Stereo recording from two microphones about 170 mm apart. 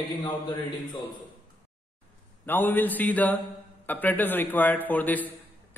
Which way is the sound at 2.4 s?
10° left (ahead or behind).